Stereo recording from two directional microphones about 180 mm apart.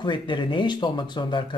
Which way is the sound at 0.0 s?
25° left (ahead or behind).